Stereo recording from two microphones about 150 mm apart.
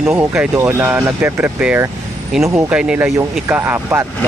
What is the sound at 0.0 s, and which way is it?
Speech, 5° right (ahead or behind).